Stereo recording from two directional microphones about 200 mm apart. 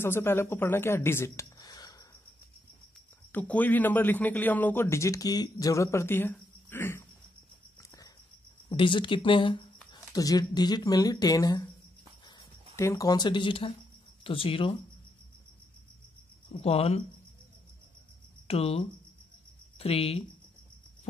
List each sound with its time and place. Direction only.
0.0 s speech: 10° left (ahead or behind)
3.3 s a man's voice: 10° left (ahead or behind)
8.6 s speech: 25° left (ahead or behind)
12.7 s speech: 15° left (ahead or behind)
16.5 s speech: 30° left (ahead or behind)
18.5 s speech: 30° left (ahead or behind)